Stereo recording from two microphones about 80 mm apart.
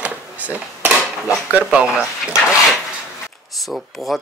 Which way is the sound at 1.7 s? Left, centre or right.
Centre.